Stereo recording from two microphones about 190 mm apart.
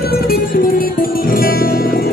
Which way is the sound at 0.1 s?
50° left (ahead or behind).